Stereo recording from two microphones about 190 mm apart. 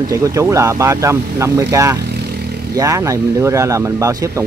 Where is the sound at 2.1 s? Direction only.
55° right (ahead or behind).